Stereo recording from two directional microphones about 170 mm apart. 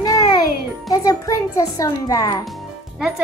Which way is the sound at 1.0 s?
20° left (ahead or behind).